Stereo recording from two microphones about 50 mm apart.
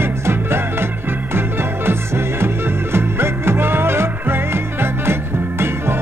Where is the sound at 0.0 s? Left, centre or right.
Right.